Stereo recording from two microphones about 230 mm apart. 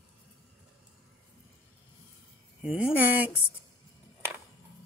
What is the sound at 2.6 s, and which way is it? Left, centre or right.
Speech, centre.